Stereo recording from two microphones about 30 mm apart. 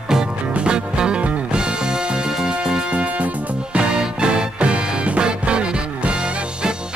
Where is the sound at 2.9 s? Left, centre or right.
Right.